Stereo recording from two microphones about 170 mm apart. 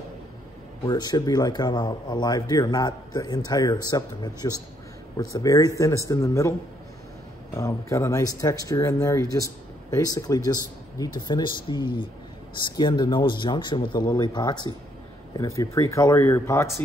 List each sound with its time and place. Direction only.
0.8 s speech: 25° left (ahead or behind)
7.5 s speech: 15° left (ahead or behind)